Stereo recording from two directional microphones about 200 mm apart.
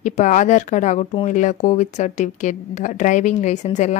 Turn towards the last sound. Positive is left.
turn(degrees=35)  # may be behind; listen again after turning